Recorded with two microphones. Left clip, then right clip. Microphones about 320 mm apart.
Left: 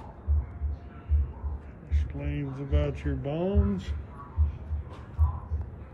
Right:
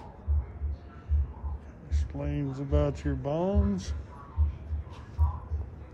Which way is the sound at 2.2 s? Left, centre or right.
Centre.